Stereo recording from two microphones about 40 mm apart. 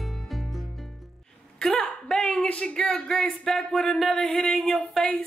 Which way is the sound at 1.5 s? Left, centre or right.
Centre.